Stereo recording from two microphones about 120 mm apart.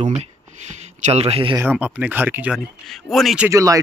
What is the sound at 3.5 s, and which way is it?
Speech, 30° right (ahead or behind).